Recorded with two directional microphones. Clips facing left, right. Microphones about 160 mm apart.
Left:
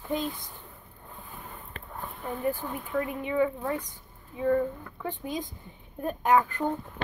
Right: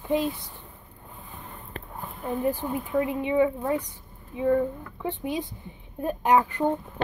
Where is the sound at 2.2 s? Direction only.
20° right (ahead or behind).